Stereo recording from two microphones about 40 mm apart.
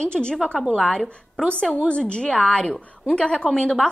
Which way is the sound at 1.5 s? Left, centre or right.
Left.